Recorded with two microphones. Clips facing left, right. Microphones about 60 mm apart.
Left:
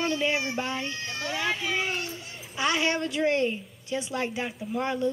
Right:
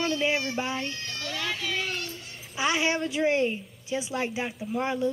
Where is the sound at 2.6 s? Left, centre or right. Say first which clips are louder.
Even; centre.